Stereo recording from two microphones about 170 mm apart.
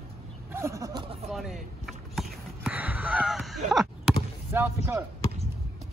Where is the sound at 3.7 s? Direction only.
Centre (ahead or behind).